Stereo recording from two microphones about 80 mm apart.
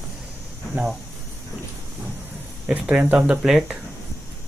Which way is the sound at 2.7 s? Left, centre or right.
Centre.